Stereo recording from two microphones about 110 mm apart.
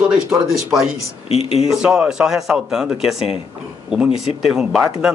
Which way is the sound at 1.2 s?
65° left (ahead or behind).